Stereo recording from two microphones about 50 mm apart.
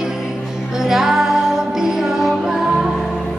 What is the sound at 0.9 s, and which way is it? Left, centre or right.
Music, centre.